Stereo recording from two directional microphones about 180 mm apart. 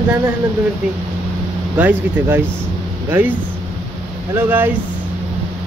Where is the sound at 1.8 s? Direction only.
10° right (ahead or behind).